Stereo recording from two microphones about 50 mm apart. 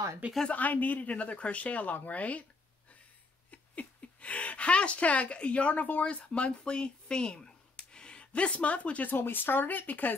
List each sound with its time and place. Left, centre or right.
0.5 s speech: left
3.4 s speech: left
9.1 s speech: left